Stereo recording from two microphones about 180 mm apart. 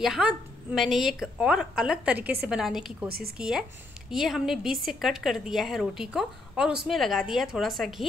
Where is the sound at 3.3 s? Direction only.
5° right (ahead or behind).